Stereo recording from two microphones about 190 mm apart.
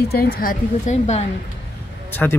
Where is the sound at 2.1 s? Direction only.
10° left (ahead or behind).